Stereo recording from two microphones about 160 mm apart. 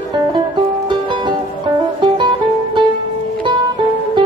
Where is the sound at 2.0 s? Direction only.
30° right (ahead or behind).